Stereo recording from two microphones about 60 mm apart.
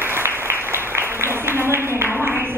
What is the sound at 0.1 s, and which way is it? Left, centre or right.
Applause, right.